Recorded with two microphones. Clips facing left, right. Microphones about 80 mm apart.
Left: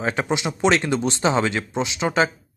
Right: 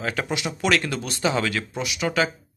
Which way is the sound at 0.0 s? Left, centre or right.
Left.